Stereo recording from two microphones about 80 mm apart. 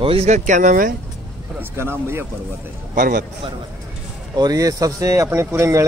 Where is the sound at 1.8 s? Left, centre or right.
Right.